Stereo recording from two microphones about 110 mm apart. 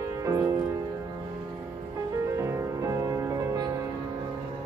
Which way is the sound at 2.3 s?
25° right (ahead or behind).